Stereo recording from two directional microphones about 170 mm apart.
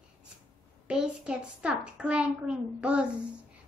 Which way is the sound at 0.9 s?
5° right (ahead or behind).